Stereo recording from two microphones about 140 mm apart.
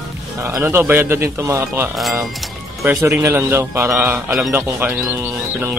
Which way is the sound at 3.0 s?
20° right (ahead or behind).